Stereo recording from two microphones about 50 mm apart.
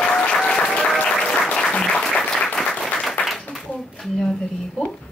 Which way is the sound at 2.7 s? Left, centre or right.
Centre.